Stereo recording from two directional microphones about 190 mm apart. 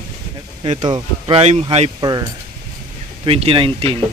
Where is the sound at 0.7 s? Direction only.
25° right (ahead or behind).